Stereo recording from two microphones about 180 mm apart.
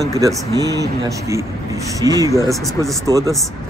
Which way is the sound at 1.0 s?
15° right (ahead or behind).